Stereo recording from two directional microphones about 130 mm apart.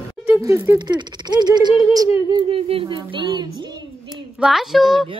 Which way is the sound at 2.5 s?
45° right (ahead or behind).